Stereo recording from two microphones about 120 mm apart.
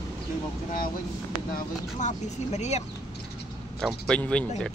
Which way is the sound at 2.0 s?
80° left.